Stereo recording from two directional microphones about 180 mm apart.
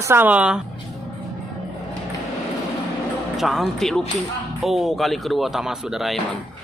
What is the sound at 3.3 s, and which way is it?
Speech, centre (ahead or behind).